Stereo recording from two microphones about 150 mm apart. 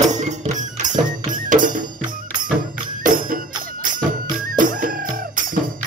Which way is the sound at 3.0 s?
65° right (ahead or behind).